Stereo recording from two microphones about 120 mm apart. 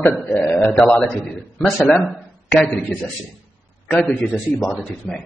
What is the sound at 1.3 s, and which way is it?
A man's voice, centre (ahead or behind).